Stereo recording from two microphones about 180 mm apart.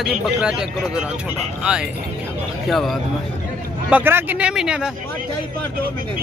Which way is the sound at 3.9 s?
10° right (ahead or behind).